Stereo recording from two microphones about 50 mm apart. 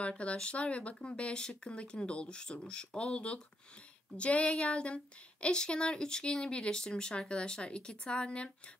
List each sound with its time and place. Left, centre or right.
0.2 s a woman's voice: left